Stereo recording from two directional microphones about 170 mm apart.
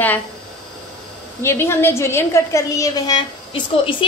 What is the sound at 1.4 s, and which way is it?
A woman's voice, 15° left (ahead or behind).